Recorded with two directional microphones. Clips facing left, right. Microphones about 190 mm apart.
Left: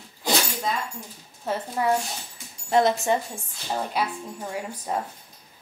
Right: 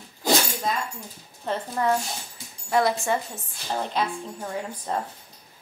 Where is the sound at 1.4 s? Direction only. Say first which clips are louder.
Even; 10° left (ahead or behind).